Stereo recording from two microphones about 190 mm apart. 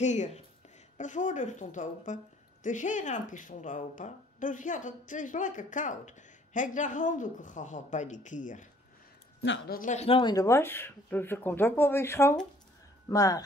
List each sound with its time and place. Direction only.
0.0 s speech: 40° left (ahead or behind)
9.4 s speech: 70° left (ahead or behind)
9.8 s speech: 40° left (ahead or behind); by 13.4 s 20° left (ahead or behind)